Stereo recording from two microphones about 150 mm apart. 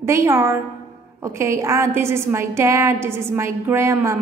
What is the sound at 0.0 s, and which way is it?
A woman's voice, 20° right (ahead or behind).